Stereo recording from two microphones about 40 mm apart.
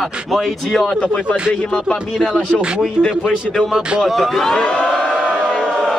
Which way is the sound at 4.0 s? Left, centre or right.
Centre.